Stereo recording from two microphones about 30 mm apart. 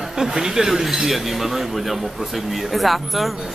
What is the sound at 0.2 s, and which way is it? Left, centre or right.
A man's voice, centre.